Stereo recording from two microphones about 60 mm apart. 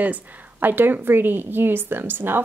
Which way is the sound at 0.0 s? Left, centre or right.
Right.